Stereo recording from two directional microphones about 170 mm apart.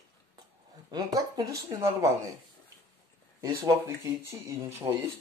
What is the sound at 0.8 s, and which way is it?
Speech, 25° right (ahead or behind).